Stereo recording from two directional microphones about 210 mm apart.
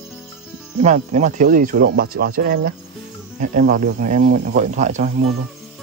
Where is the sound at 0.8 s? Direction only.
35° right (ahead or behind).